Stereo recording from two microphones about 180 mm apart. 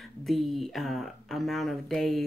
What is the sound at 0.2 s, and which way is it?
Speech, centre (ahead or behind).